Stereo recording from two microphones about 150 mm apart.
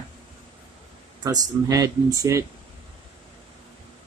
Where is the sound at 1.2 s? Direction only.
25° right (ahead or behind).